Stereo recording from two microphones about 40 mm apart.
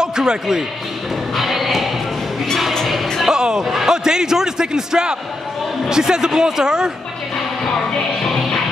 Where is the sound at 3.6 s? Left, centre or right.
Centre.